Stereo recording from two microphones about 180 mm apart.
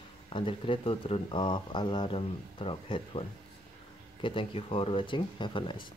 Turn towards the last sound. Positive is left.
turn(degrees=25)  # may be behind; listen again after turning